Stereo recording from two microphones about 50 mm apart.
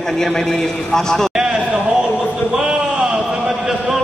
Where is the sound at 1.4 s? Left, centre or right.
Centre.